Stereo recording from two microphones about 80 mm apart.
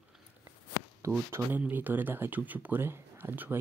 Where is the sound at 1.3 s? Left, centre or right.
Right.